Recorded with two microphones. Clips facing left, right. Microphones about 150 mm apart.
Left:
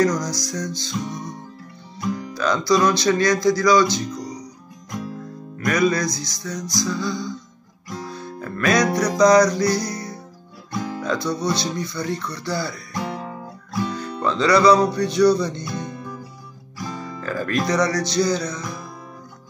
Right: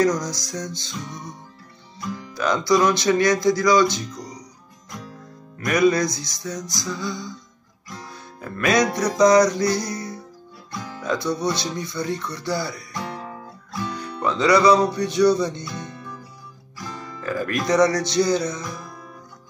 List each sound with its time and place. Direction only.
0.0 s music: 25° right (ahead or behind)
2.3 s music: 20° right (ahead or behind)
5.7 s music: 25° right (ahead or behind)
8.4 s music: 20° right (ahead or behind)
10.8 s music: 20° left (ahead or behind)
11.1 s music: 20° right (ahead or behind)
14.2 s music: 20° right (ahead or behind)
15.6 s music: 15° left (ahead or behind)
17.2 s music: 15° right (ahead or behind)